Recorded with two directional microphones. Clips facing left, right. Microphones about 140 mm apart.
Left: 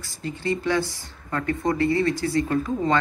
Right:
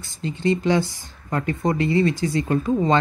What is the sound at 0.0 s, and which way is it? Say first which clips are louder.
Speech: right 5 dB; 20° right (ahead or behind).